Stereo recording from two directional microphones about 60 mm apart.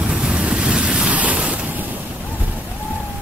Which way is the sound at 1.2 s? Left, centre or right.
Centre.